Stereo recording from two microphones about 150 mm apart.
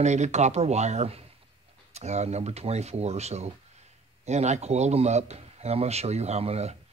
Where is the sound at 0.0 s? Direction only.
50° right (ahead or behind).